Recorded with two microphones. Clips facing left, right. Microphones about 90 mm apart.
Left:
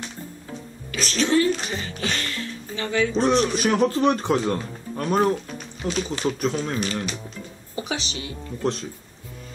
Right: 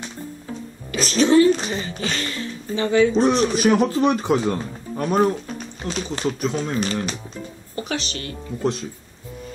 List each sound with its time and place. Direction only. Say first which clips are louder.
0.9 s a woman's voice: right 6 dB; 20° right (ahead or behind)
3.3 s speech: right 3 dB; 10° right (ahead or behind)
5.8 s speech: even; 5° left (ahead or behind)
6.8 s speech: right 3 dB; 35° right (ahead or behind)
7.7 s speech: right 2 dB; 15° left (ahead or behind)